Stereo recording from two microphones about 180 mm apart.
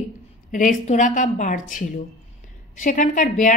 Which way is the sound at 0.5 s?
45° left (ahead or behind).